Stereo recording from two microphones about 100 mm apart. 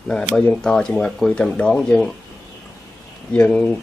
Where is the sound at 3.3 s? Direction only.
10° left (ahead or behind).